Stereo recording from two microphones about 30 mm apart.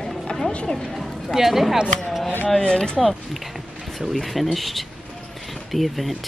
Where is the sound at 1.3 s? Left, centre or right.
Centre.